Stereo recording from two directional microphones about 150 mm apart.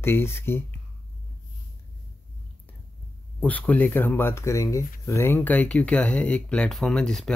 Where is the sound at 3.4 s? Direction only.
10° left (ahead or behind).